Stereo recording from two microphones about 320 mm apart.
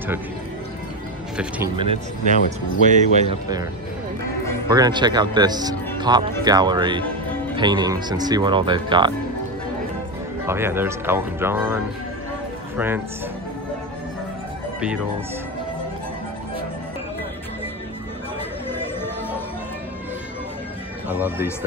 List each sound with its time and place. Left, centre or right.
1.3 s speech: centre
1.8 s speech: centre
4.6 s speech: centre
10.4 s speech: centre
21.1 s speech: centre